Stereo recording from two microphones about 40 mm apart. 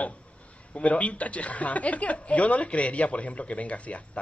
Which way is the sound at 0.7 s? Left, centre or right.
Left.